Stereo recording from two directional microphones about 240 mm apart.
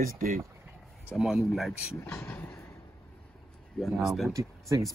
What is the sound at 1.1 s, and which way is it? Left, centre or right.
Speech, centre.